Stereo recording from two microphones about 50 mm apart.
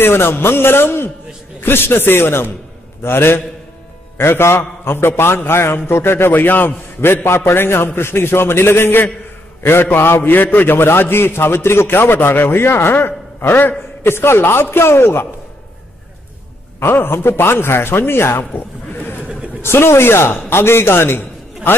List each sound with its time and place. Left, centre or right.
0.0 s a man's voice: left
16.8 s a man's voice: left
18.4 s speech: left
19.6 s a man's voice: left